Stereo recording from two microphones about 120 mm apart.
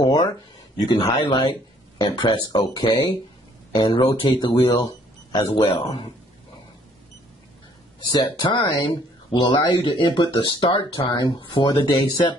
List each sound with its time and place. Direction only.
0.0 s speech: 35° left (ahead or behind)
1.2 s speech: 40° left (ahead or behind)
8.1 s speech: 40° left (ahead or behind)